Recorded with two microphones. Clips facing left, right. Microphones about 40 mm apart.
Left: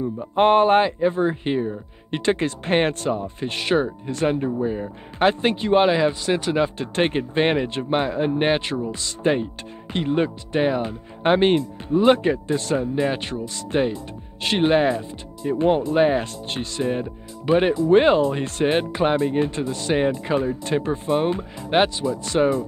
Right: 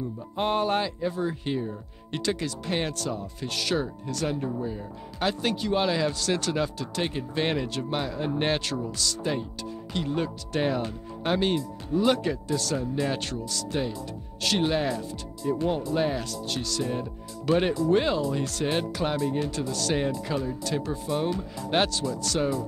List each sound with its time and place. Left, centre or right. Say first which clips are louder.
0.0 s speech: left 10 dB; left
6.8 s speech: left 8 dB; left
10.6 s speech: left 5 dB; left
11.2 s speech: left 8 dB; left